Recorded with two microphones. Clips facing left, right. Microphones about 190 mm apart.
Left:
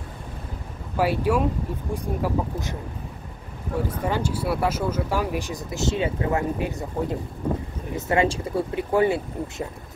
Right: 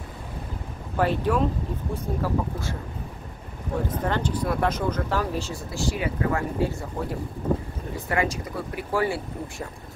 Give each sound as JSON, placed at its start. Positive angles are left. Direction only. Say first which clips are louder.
{"t": 0.9, "sound": "speech", "louder": "left 1 dB", "side_deg": 10}
{"t": 3.8, "sound": "speech", "louder": "left 1 dB", "side_deg": 10}